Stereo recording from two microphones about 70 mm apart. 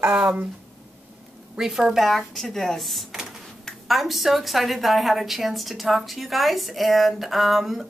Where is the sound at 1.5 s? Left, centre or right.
Centre.